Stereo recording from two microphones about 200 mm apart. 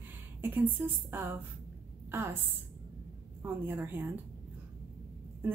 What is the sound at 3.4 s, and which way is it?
Speech, 10° right (ahead or behind).